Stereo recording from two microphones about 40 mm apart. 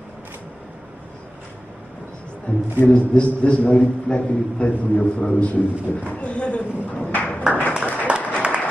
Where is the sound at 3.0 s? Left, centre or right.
Left.